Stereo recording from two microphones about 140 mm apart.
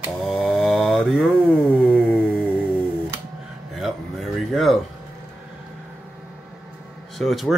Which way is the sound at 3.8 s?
Centre (ahead or behind).